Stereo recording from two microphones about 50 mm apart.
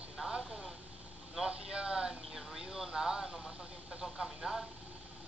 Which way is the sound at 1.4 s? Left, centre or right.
Centre.